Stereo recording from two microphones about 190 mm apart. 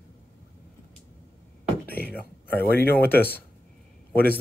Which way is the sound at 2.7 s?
55° left (ahead or behind).